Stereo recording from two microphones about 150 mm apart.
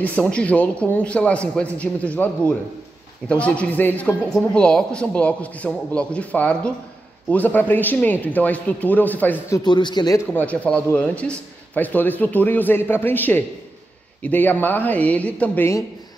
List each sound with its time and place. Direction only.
0.0 s speech: 10° left (ahead or behind)
9.7 s speech: 30° left (ahead or behind)
10.3 s speech: 10° left (ahead or behind)